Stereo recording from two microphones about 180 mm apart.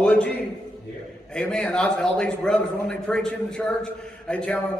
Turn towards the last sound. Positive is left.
turn(degrees=5)  # may be behind; listen again after turning